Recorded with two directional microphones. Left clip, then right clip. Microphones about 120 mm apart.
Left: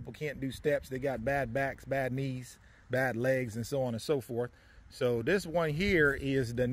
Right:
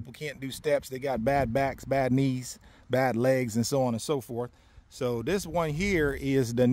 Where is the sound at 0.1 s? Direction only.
55° right (ahead or behind).